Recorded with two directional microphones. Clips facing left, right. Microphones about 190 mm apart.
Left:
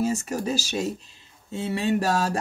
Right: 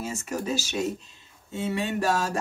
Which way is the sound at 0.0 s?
35° left (ahead or behind).